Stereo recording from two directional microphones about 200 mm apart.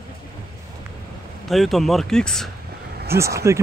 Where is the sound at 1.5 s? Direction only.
Centre (ahead or behind).